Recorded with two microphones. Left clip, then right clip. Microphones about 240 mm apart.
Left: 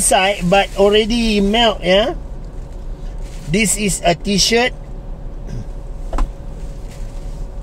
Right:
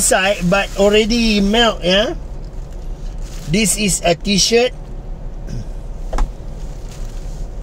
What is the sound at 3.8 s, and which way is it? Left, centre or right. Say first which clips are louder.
Speech: even; centre.